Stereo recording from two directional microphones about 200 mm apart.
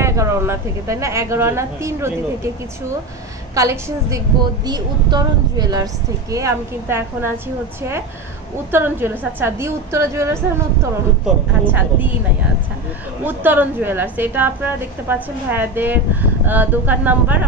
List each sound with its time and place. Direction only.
0.0 s a woman's voice: 15° right (ahead or behind)
3.5 s a woman's voice: 15° right (ahead or behind)
8.7 s a woman's voice: 10° right (ahead or behind)
13.2 s a woman's voice: 10° right (ahead or behind)